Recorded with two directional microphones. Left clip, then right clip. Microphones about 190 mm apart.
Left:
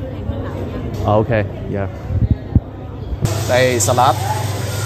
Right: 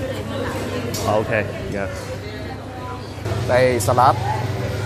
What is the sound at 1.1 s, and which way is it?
Speech, 15° left (ahead or behind).